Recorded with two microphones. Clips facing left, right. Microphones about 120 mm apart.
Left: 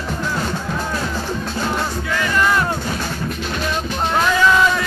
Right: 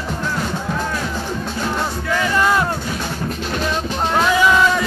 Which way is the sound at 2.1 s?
20° right (ahead or behind).